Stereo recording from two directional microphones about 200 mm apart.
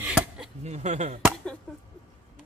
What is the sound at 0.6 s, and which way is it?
Speech, 35° right (ahead or behind).